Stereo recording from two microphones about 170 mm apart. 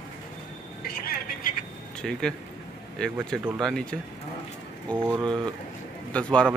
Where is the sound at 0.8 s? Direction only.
60° left (ahead or behind).